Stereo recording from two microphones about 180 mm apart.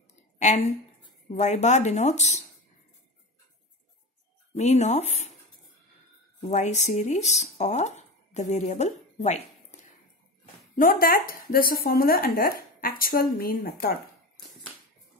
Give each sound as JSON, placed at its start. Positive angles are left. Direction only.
{"t": 1.3, "sound": "speech", "side_deg": 40}
{"t": 4.6, "sound": "speech", "side_deg": 40}
{"t": 6.5, "sound": "speech", "side_deg": 40}
{"t": 10.8, "sound": "speech", "side_deg": 55}